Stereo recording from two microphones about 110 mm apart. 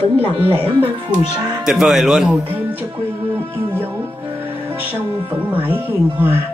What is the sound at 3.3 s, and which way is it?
Speech, 20° right (ahead or behind).